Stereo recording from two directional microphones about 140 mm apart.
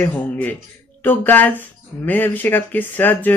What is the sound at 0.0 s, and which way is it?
Speech, 10° left (ahead or behind).